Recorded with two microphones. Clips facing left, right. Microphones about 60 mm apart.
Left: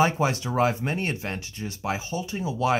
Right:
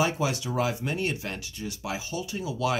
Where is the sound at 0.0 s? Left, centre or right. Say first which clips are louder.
Left 4 dB; left.